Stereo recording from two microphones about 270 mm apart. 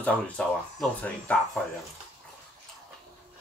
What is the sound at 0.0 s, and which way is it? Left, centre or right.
Speech, centre.